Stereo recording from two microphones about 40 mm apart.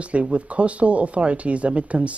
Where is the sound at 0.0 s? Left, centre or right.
Right.